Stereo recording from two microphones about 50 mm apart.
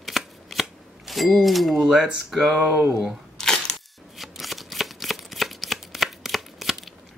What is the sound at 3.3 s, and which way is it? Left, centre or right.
Single-lens reflex camera, centre.